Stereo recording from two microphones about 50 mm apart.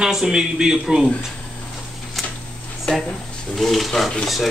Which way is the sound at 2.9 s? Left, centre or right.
Centre.